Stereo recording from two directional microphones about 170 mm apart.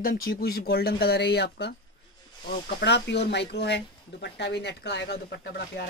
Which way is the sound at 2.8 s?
85° left.